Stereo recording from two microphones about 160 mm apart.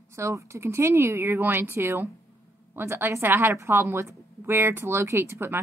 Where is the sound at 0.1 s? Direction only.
20° right (ahead or behind).